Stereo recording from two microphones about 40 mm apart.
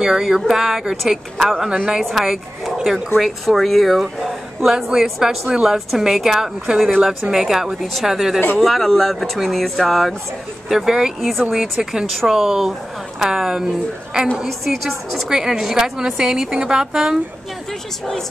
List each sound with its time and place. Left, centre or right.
0.0 s a woman's voice: centre
8.5 s speech: centre
10.7 s a woman's voice: centre
11.1 s speech: centre
11.8 s a woman's voice: centre
14.4 s speech: centre
15.2 s a woman's voice: centre